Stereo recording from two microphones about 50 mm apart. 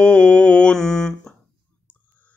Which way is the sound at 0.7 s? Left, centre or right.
Centre.